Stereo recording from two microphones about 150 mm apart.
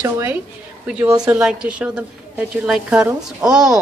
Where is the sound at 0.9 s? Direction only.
5° right (ahead or behind).